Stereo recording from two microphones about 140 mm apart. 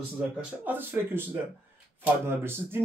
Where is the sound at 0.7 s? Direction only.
15° right (ahead or behind).